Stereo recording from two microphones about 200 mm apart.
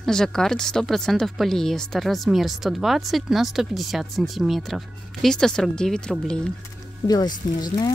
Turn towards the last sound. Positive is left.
turn(degrees=20)  # may be behind; listen again after turning